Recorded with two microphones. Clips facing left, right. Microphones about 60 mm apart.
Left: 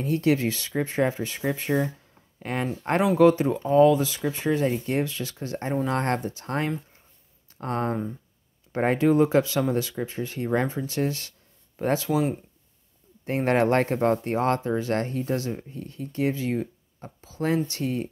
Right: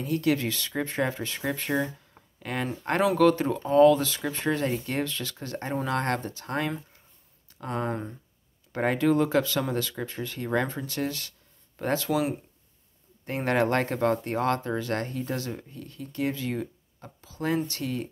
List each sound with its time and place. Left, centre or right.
0.0 s speech: left
1.4 s speech: centre
2.4 s speech: left
7.9 s speech: centre
8.7 s speech: left
13.2 s speech: left